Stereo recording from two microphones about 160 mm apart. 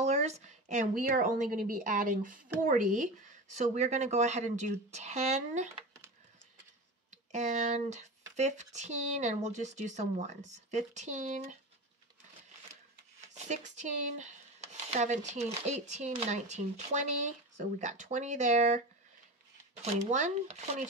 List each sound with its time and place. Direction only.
0.0 s a sound: 45° right (ahead or behind)
1.0 s speech: 60° right (ahead or behind); by 5.7 s 45° right (ahead or behind)
7.3 s speech: 45° right (ahead or behind)
13.5 s speech: 50° right (ahead or behind)
19.8 s speech: 50° right (ahead or behind)